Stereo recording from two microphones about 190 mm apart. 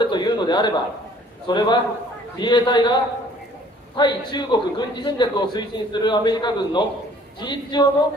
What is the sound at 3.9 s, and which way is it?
A man's voice, 25° left (ahead or behind).